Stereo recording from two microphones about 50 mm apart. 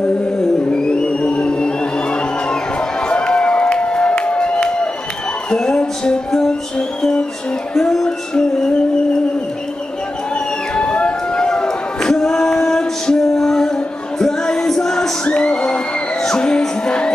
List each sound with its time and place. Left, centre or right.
0.7 s music: centre
3.1 s a sound: centre
4.2 s crowd: left
5.5 s music: centre
10.7 s a sound: left
14.2 s music: centre